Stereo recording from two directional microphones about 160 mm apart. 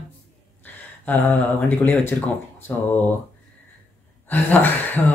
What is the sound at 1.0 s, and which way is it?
Speech, 10° left (ahead or behind).